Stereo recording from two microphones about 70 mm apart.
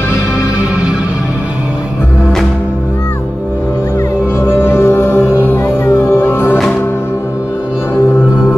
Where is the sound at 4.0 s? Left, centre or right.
Left.